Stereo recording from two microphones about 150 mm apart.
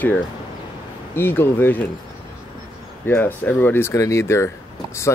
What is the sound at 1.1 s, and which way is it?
Speech, 15° left (ahead or behind).